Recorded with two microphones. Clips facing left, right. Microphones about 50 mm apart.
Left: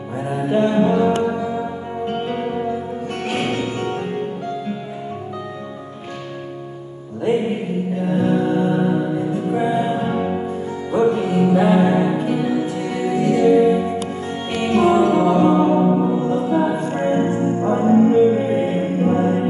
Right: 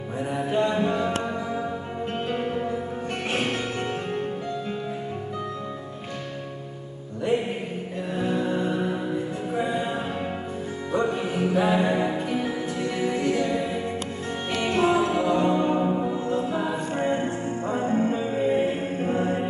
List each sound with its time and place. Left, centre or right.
0.3 s music: centre
8.1 s music: centre
14.6 s music: centre
14.9 s music: centre
15.9 s music: left
18.7 s choir: left